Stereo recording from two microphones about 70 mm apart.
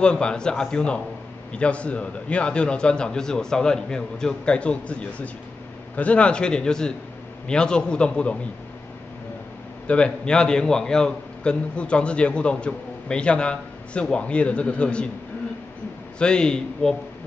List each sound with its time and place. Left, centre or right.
0.0 s a man's voice: centre
9.8 s a man's voice: centre
16.2 s a man's voice: centre